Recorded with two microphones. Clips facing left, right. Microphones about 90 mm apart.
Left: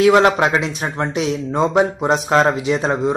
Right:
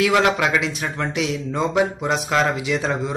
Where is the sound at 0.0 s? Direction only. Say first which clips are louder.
Left 5 dB; 30° left (ahead or behind).